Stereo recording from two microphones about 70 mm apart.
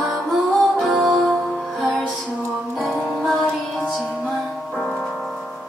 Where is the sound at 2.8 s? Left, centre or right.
Centre.